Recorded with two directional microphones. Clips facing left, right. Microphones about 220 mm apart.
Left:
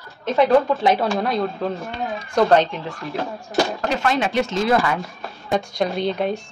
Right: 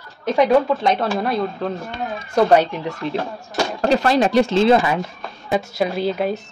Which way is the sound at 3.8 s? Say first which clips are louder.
Right 5 dB; 35° right (ahead or behind).